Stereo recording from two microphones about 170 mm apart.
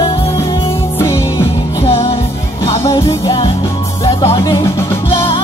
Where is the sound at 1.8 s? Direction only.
35° left (ahead or behind).